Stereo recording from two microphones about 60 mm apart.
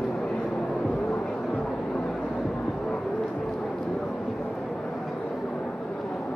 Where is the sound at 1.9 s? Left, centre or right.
Centre.